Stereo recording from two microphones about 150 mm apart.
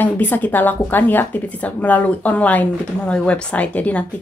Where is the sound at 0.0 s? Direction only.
10° left (ahead or behind).